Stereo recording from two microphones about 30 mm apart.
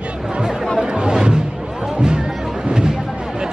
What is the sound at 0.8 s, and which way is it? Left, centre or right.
Chatter, right.